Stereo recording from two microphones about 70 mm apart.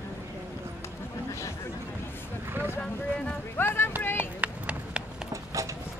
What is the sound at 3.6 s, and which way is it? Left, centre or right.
Clip-clop, left.